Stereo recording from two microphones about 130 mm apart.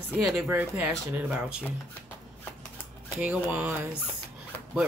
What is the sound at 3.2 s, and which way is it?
Speech, 10° right (ahead or behind).